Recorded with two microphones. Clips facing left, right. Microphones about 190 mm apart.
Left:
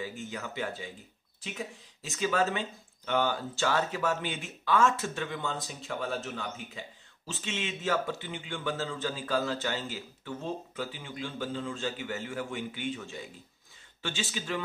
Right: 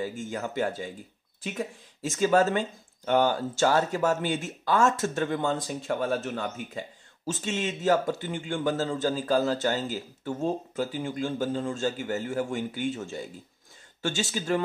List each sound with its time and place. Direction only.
0.0 s a man's voice: 45° right (ahead or behind)
2.0 s a man's voice: 45° right (ahead or behind)